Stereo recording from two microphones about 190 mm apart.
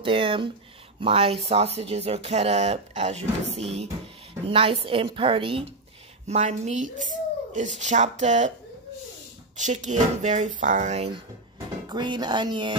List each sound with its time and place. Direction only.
0.0 s a woman's voice: 25° right (ahead or behind)
9.6 s speech: 40° right (ahead or behind)
11.9 s a woman's voice: 25° right (ahead or behind)